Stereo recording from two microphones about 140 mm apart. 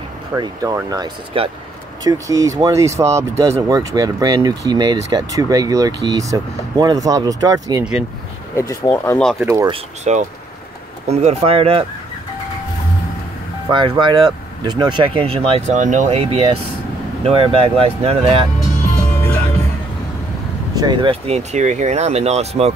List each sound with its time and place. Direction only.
0.3 s speech: 25° right (ahead or behind)
1.3 s speech: 40° right (ahead or behind)
2.0 s speech: 25° right (ahead or behind)
8.5 s speech: 25° left (ahead or behind)
9.2 s speech: 5° left (ahead or behind)
10.1 s speech: 55° right (ahead or behind)
13.7 s speech: 35° right (ahead or behind)
15.7 s speech: 60° right (ahead or behind); by 18.5 s 40° right (ahead or behind)
20.7 s speech: 30° right (ahead or behind)
21.3 s speech: 55° right (ahead or behind)